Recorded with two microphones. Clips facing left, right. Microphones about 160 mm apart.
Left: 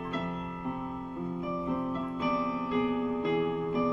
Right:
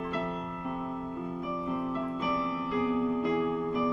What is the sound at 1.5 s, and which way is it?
Piano, 25° left (ahead or behind).